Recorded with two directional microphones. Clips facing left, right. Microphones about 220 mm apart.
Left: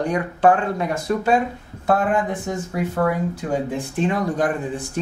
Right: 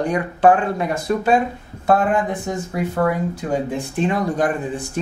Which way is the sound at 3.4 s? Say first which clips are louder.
Right 1 dB; 25° right (ahead or behind).